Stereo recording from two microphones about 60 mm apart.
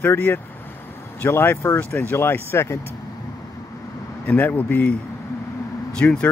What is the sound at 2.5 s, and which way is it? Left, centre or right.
Speech, left.